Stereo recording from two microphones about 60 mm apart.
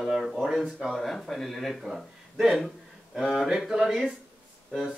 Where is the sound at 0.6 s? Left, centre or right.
Centre.